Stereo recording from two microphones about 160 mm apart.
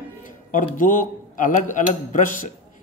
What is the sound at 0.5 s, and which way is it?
Speech, 55° left (ahead or behind).